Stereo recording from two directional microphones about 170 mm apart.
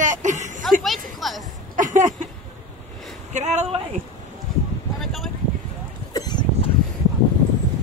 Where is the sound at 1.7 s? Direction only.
50° right (ahead or behind).